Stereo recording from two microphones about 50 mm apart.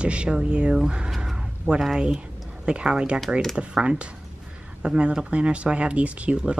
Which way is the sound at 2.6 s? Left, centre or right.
Centre.